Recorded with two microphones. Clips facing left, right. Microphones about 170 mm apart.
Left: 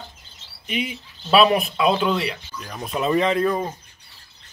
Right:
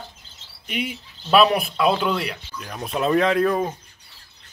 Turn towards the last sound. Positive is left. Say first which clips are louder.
# right 1 dB
turn(degrees=0)  # may be behind; listen again after turning